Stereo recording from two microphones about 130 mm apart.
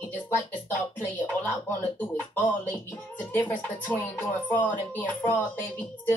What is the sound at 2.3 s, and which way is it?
A woman's voice, 15° left (ahead or behind).